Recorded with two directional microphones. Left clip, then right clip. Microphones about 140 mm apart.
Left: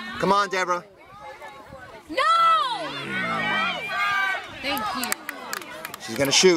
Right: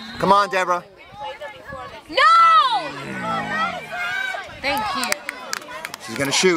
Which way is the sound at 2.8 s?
5° right (ahead or behind).